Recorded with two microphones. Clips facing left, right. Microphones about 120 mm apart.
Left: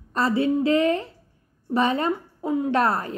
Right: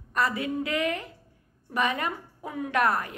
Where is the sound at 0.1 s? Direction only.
30° left (ahead or behind).